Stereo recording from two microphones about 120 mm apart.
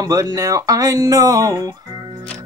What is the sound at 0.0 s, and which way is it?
Mantra, 30° right (ahead or behind).